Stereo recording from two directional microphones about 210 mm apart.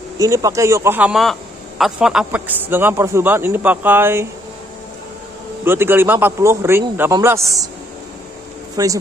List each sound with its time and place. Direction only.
0.2 s a man's voice: 15° right (ahead or behind)
5.7 s a man's voice: 10° right (ahead or behind)
8.7 s speech: 15° right (ahead or behind)